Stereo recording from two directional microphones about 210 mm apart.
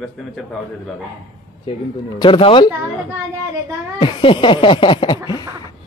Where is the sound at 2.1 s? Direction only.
20° left (ahead or behind).